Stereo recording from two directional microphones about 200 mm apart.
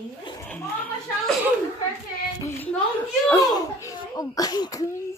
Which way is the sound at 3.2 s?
20° left (ahead or behind).